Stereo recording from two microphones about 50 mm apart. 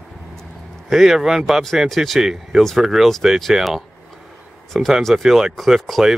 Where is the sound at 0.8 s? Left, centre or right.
Centre.